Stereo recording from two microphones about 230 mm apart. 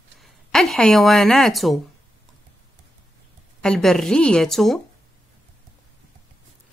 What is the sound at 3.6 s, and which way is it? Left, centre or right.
A woman's voice, centre.